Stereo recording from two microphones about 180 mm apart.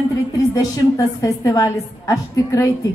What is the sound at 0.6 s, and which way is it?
Speech, 20° left (ahead or behind).